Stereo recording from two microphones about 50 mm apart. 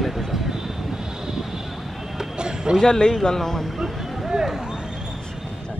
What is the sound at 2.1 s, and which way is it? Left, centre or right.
Run, centre.